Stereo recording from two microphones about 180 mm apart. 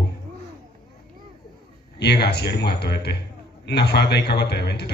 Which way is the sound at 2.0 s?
65° left (ahead or behind).